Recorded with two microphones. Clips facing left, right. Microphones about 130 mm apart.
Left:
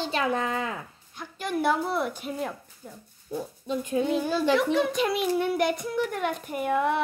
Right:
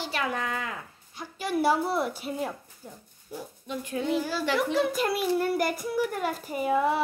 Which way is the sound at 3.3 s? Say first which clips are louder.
Left 5 dB; 25° left (ahead or behind).